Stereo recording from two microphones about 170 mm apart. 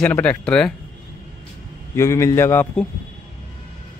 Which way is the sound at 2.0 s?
15° left (ahead or behind).